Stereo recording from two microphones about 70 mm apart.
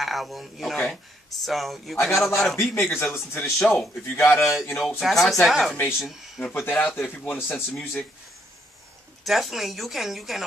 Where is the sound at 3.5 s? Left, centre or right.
Centre.